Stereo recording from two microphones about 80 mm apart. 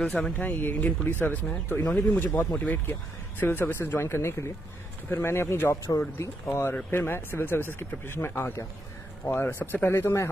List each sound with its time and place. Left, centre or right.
0.0 s speech: centre
2.9 s speech: left
9.3 s speech: left